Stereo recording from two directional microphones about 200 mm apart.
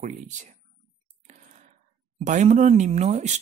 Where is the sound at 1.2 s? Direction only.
40° right (ahead or behind).